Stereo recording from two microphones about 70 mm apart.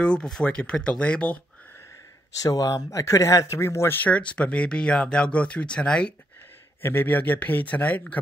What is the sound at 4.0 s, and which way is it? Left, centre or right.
Speech, centre.